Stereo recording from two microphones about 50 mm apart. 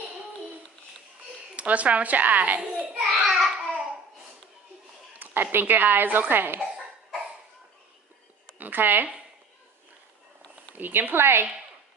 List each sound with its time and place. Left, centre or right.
1.6 s a woman's voice: right
2.8 s a sound: right
3.3 s babbling: right
5.2 s a woman's voice: right
8.5 s a woman's voice: right
10.8 s speech: right